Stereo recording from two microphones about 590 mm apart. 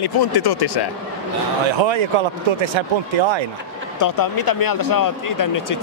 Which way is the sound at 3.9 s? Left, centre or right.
Left.